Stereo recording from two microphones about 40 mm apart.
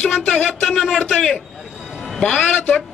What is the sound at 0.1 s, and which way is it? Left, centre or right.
Speech, centre.